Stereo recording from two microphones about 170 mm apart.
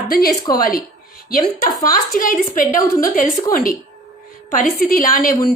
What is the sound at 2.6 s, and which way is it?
A woman's voice, 55° left (ahead or behind).